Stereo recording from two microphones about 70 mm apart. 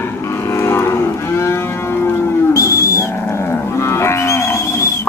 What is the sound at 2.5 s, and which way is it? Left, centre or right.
Livestock, left.